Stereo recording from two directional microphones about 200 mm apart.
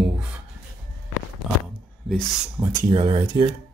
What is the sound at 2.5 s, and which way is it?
Speech, 20° right (ahead or behind).